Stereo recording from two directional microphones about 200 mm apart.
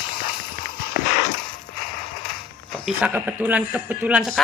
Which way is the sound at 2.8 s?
5° right (ahead or behind).